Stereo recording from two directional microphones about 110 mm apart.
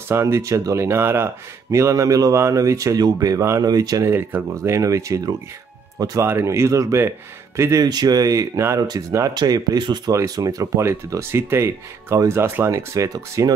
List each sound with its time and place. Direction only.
0.1 s speech: 25° right (ahead or behind)
4.1 s speech: 20° right (ahead or behind)
6.2 s speech: 25° right (ahead or behind)